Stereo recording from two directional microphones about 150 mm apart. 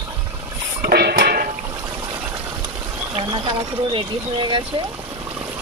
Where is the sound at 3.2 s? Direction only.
40° right (ahead or behind).